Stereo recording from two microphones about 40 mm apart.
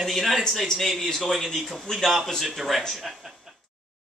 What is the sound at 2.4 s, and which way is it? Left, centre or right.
Speech, centre.